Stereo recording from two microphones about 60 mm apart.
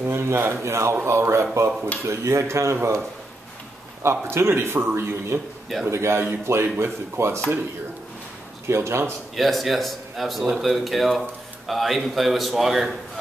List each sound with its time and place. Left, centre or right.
0.0 s a man's voice: right
4.0 s a man's voice: right
8.6 s a man's voice: right
9.3 s a man's voice: centre